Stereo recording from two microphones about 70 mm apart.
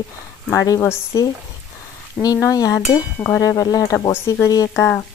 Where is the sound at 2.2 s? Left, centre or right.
Left.